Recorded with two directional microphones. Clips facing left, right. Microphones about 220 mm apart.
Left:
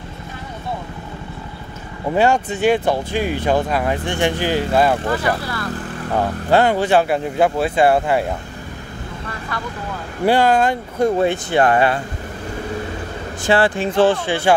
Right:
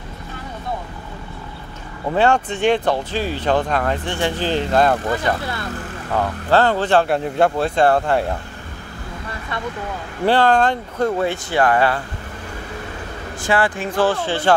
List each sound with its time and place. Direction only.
2.1 s speech: 10° left (ahead or behind)
10.2 s speech: 10° left (ahead or behind)
11.1 s speech: 25° left (ahead or behind)
13.5 s speech: 25° left (ahead or behind)